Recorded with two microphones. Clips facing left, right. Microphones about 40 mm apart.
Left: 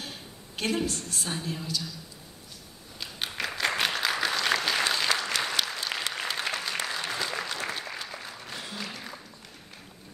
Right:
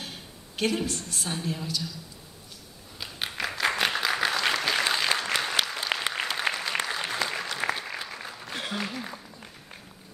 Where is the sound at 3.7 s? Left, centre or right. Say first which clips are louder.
Right 1 dB; centre.